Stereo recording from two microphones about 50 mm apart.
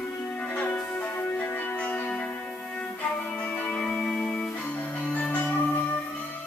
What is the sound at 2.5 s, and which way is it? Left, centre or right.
Violin, centre.